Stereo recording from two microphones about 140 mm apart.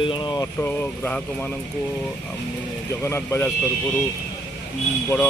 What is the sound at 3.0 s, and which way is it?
Speech, 20° left (ahead or behind).